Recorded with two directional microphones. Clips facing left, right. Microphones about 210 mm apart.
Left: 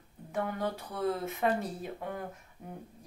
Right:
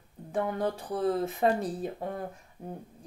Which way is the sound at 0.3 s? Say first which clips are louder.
Right 4 dB; 30° right (ahead or behind).